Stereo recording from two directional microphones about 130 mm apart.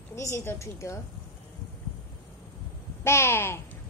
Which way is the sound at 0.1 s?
20° left (ahead or behind).